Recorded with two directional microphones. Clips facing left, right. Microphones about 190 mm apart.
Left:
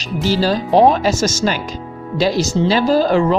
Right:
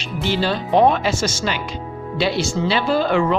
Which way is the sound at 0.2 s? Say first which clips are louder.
Left 4 dB; 40° left (ahead or behind).